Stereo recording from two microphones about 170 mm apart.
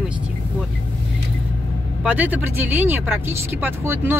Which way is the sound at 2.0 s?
10° right (ahead or behind).